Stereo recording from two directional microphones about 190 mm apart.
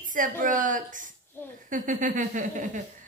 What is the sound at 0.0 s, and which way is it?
Speech, 45° right (ahead or behind).